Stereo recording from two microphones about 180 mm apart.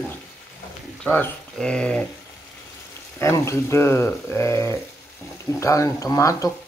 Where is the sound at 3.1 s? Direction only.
15° left (ahead or behind).